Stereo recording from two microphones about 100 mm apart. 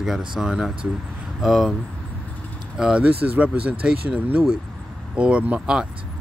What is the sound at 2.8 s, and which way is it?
Speech, 10° right (ahead or behind).